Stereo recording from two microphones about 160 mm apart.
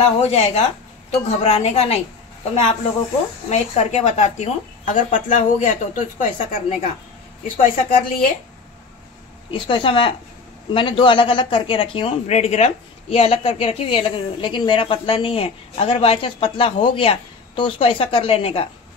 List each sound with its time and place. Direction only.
0.2 s a woman's voice: 45° left (ahead or behind)
3.4 s speech: 45° left (ahead or behind)
9.5 s a woman's voice: 30° left (ahead or behind)
12.3 s a woman's voice: 45° left (ahead or behind)